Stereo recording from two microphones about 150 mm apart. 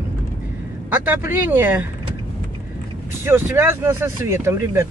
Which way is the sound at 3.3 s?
15° right (ahead or behind).